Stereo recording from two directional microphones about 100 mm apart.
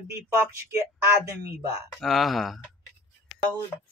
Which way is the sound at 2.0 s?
Centre (ahead or behind).